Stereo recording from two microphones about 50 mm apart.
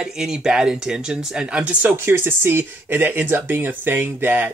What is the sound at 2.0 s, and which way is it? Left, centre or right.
Speech, right.